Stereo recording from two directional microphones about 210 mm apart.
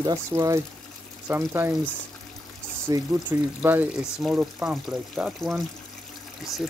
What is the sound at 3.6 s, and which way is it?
Speech, 10° right (ahead or behind).